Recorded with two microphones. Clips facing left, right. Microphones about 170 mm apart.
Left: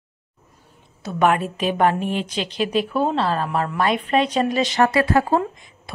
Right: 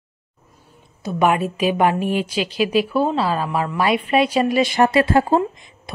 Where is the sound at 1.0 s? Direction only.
10° right (ahead or behind).